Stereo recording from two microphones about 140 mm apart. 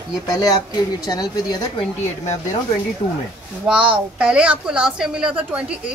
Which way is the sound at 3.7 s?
5° right (ahead or behind).